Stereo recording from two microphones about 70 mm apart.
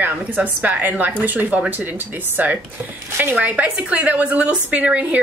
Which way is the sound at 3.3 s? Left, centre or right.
Right.